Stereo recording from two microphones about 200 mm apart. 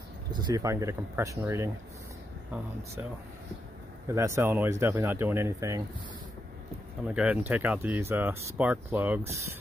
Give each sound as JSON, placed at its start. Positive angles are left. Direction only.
{"t": 0.3, "sound": "speech", "side_deg": -20}
{"t": 4.1, "sound": "speech", "side_deg": -15}
{"t": 7.1, "sound": "speech", "side_deg": -5}